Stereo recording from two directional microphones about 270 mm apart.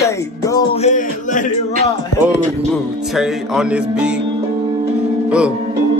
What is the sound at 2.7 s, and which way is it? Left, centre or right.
Music, centre.